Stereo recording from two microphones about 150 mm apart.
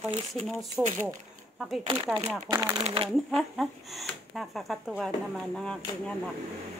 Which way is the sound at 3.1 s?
Centre (ahead or behind).